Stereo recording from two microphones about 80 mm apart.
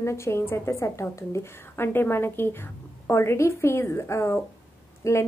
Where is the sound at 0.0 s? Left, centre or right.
Left.